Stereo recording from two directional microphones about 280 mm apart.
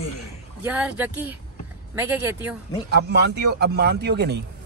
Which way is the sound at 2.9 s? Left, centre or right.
Right.